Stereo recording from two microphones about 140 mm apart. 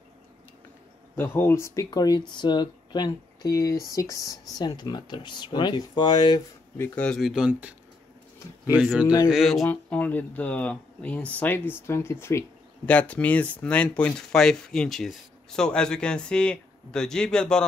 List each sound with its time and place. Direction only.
1.1 s speech: 15° left (ahead or behind)
1.9 s speech: 30° left (ahead or behind)
6.8 s speech: 5° left (ahead or behind)
8.7 s speech: 5° right (ahead or behind)
9.7 s speech: 10° left (ahead or behind)